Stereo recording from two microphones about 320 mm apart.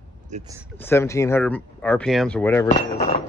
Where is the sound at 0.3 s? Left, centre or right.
Centre.